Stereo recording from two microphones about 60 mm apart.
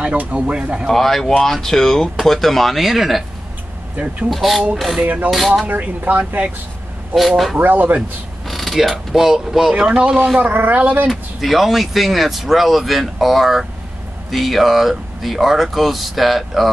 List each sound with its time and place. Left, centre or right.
0.0 s speech: right
0.8 s speech: centre
3.9 s speech: right
4.3 s speech: centre
5.0 s speech: right
7.2 s speech: centre
7.5 s speech: right
8.5 s speech: centre
10.4 s speech: right
11.1 s speech: centre